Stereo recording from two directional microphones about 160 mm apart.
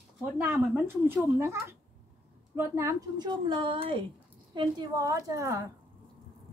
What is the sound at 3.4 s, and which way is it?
Speech, 30° right (ahead or behind).